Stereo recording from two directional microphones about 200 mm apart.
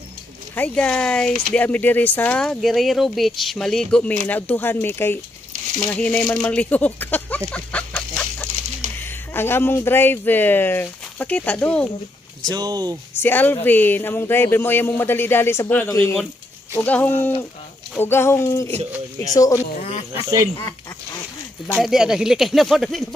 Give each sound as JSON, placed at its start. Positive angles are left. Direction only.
{"t": 0.6, "sound": "speech", "side_deg": 5}
{"t": 12.4, "sound": "speech", "side_deg": -20}
{"t": 13.2, "sound": "speech", "side_deg": 10}
{"t": 19.8, "sound": "a sound", "side_deg": 35}
{"t": 20.1, "sound": "speech", "side_deg": -15}
{"t": 21.6, "sound": "speech", "side_deg": 0}